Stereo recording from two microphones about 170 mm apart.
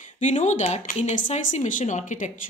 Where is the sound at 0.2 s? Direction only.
45° left (ahead or behind).